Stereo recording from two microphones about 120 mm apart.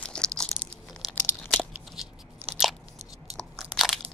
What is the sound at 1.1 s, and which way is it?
Crunch, 20° left (ahead or behind).